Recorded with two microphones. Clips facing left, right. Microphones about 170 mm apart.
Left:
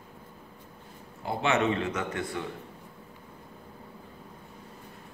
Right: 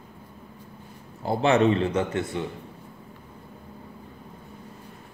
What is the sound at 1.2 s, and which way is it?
A man's voice, 35° right (ahead or behind).